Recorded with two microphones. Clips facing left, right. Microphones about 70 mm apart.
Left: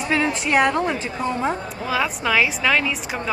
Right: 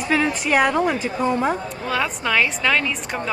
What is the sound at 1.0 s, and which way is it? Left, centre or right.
Speech, centre.